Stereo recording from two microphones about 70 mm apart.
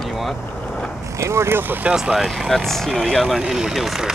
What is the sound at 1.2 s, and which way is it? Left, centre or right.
Speech, right.